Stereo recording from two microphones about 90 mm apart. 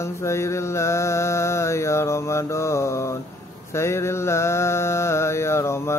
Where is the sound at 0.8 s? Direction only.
30° left (ahead or behind).